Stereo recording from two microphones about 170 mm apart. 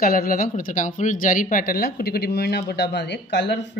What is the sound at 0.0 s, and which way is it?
Speech, 55° left (ahead or behind).